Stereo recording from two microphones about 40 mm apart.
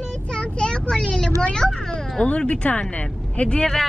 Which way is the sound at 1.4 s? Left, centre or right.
Left.